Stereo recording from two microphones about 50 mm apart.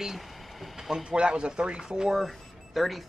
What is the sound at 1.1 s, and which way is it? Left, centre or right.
Speech, centre.